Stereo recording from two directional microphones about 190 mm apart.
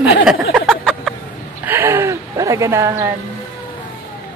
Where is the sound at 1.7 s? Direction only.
10° right (ahead or behind).